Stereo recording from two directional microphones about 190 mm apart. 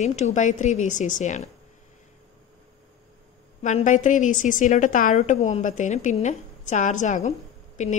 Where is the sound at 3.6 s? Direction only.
40° left (ahead or behind).